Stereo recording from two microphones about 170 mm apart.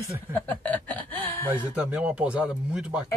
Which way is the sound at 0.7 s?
10° left (ahead or behind).